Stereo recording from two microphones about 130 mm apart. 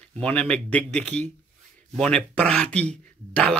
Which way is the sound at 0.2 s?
10° left (ahead or behind).